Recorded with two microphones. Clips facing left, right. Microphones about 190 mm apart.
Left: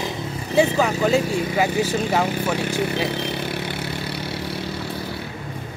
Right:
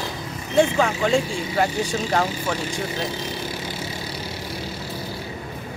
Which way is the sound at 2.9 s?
65° left (ahead or behind).